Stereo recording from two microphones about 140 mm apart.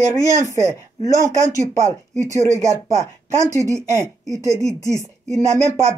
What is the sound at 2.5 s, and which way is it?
Speech, 20° right (ahead or behind).